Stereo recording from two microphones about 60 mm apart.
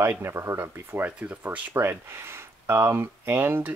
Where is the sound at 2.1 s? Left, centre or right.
Right.